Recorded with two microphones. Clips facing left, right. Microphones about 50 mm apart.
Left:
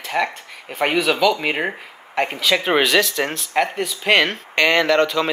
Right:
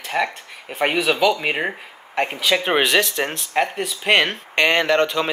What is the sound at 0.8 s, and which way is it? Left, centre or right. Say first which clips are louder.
Speech: left 1 dB; centre.